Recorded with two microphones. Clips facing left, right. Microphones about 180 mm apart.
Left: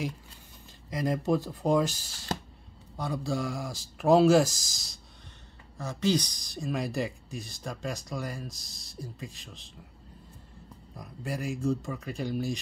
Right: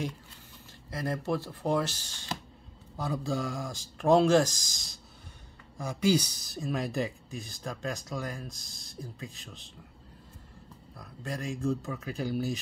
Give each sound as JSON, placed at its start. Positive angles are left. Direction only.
{"t": 0.8, "sound": "speech", "side_deg": 15}
{"t": 3.0, "sound": "speech", "side_deg": 0}
{"t": 5.8, "sound": "speech", "side_deg": -10}
{"t": 11.0, "sound": "speech", "side_deg": 5}